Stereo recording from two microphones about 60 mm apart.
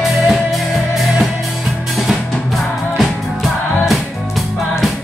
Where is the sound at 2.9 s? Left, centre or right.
Centre.